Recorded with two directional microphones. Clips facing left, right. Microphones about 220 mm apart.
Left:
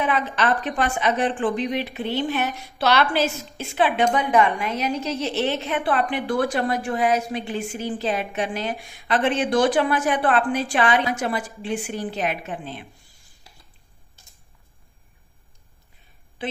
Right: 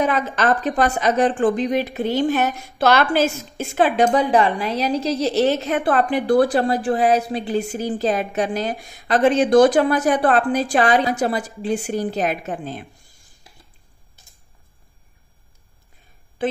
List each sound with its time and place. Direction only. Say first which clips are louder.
0.0 s a woman's voice: right 3 dB; 45° right (ahead or behind)
16.4 s a woman's voice: right 7 dB; 45° right (ahead or behind)